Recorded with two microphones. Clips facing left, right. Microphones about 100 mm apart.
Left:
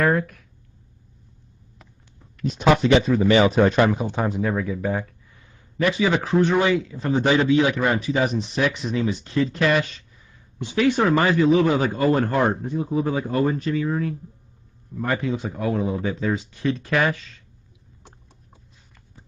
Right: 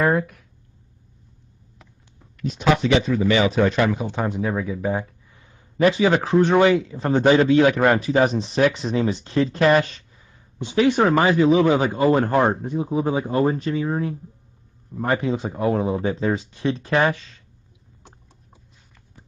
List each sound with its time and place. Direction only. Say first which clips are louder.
0.1 s speech: right 1 dB; 5° right (ahead or behind)
2.4 s a man's voice: left 2 dB; 45° left (ahead or behind)
4.1 s speech: even; centre (ahead or behind); by 5.7 s 20° right (ahead or behind)
5.9 s speech: right 3 dB; 30° right (ahead or behind)
9.7 s speech: right 4 dB; 40° right (ahead or behind)
10.1 s a sound: even; 25° right (ahead or behind)
11.1 s speech: right 1 dB; 20° right (ahead or behind)